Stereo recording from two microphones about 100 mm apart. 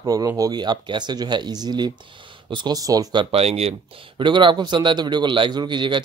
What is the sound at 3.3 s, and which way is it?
Speech, 90° right.